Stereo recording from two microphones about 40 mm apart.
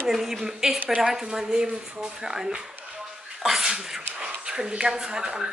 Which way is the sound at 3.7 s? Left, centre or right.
Centre.